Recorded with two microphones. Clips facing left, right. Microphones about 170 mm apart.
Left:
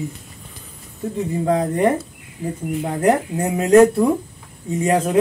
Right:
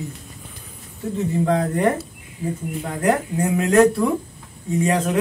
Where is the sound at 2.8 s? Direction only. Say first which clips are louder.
Left 3 dB; 20° left (ahead or behind).